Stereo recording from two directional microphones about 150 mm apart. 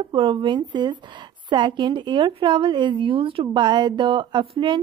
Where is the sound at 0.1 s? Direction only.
35° right (ahead or behind).